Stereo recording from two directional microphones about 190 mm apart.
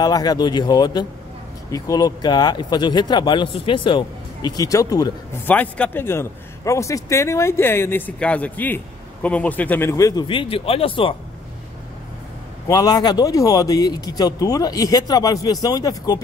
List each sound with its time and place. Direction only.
0.0 s speech: 20° left (ahead or behind)
5.5 s a man's voice: 10° left (ahead or behind); by 11.1 s 25° left (ahead or behind)
12.6 s speech: 20° left (ahead or behind)